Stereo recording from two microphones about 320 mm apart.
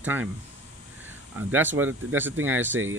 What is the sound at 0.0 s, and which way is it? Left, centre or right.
Speech, centre.